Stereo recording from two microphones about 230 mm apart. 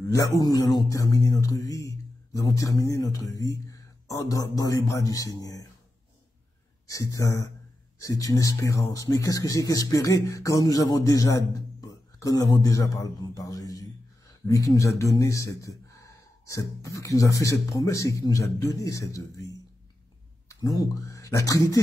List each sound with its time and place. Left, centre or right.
0.1 s speech: centre
6.9 s speech: centre